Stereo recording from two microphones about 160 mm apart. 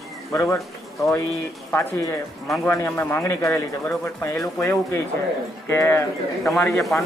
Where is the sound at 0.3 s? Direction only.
20° left (ahead or behind).